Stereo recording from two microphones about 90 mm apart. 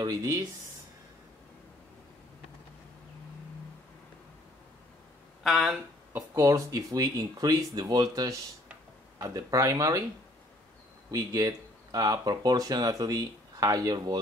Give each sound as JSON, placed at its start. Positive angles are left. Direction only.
{"t": 0.0, "sound": "speech", "side_deg": -40}
{"t": 5.4, "sound": "speech", "side_deg": -5}
{"t": 6.3, "sound": "speech", "side_deg": -40}
{"t": 11.1, "sound": "speech", "side_deg": -40}